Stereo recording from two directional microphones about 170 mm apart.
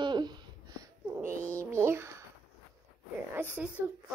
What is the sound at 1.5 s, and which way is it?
Speech, 15° right (ahead or behind).